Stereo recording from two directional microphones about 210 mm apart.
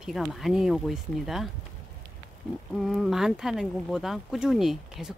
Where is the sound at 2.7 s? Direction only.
Centre (ahead or behind).